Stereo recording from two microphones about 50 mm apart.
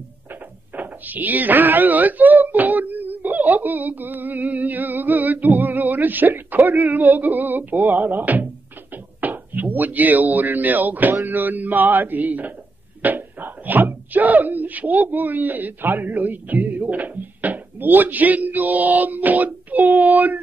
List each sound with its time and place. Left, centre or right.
0.3 s speech: right
11.2 s mantra: right
13.0 s speech: right